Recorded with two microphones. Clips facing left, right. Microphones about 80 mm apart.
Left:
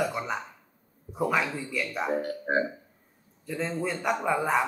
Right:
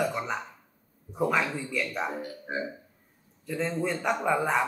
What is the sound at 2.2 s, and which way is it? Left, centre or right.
Speech, left.